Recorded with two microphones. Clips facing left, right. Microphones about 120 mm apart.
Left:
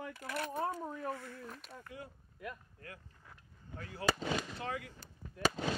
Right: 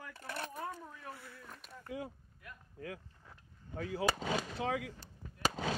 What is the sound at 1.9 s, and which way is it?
Speech, 90° right.